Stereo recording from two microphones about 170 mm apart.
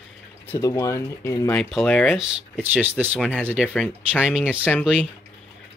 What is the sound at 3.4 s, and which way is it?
Speech, 10° right (ahead or behind).